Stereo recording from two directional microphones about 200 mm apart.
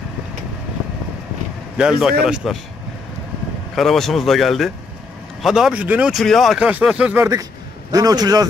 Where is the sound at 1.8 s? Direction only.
5° right (ahead or behind).